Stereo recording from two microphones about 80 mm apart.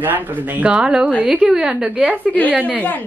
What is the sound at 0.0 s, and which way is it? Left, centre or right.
Speech, right.